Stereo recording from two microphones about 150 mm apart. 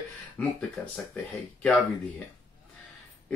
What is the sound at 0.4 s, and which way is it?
Speech, 5° left (ahead or behind).